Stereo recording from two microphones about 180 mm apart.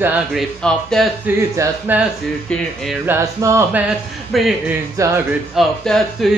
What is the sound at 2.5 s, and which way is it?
Music, centre (ahead or behind).